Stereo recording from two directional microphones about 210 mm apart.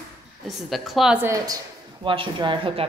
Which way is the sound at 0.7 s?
Centre (ahead or behind).